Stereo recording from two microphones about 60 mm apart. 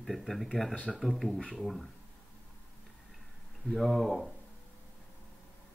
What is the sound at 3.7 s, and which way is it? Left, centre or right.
Speech, centre.